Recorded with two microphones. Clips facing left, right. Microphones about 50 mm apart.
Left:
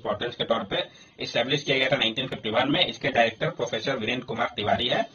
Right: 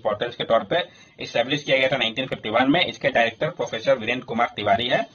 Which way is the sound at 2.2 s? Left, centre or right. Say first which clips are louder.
Right 3 dB; right.